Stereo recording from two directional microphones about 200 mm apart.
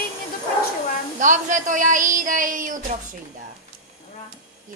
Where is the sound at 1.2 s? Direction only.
40° right (ahead or behind).